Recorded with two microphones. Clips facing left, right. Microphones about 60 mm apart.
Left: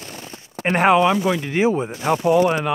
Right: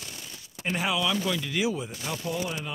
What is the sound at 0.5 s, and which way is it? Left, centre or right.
Speech, left.